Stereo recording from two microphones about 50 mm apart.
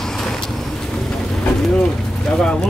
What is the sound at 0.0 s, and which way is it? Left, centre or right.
Vehicle, centre.